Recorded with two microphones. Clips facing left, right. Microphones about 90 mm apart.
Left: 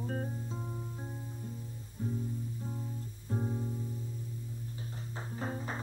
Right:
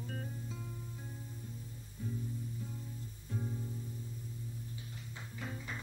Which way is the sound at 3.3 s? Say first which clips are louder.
Left 6 dB; 40° left (ahead or behind).